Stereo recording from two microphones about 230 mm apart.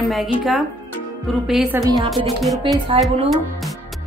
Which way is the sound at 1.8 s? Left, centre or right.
Centre.